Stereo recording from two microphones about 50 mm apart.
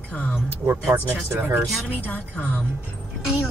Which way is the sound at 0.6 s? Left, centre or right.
Right.